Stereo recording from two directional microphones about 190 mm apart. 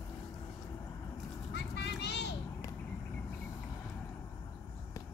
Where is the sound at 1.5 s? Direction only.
65° left (ahead or behind).